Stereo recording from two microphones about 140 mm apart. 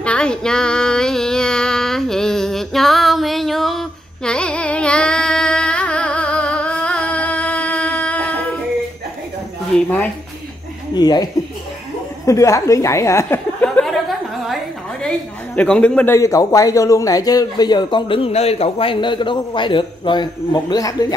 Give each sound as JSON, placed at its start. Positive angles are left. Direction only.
{"t": 0.0, "sound": "female singing", "side_deg": 5}
{"t": 9.8, "sound": "speech", "side_deg": 10}
{"t": 11.0, "sound": "speech", "side_deg": 30}
{"t": 12.3, "sound": "a woman's voice", "side_deg": 20}
{"t": 14.5, "sound": "a sound", "side_deg": 5}
{"t": 16.2, "sound": "speech", "side_deg": 25}